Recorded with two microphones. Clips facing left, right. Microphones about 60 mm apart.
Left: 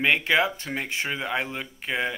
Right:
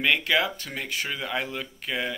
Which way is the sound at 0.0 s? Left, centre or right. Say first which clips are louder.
Left 2 dB; left.